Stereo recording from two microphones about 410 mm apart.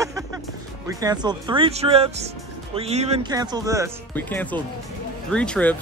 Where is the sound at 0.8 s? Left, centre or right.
Centre.